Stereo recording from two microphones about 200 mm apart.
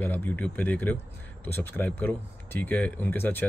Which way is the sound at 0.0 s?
10° left (ahead or behind).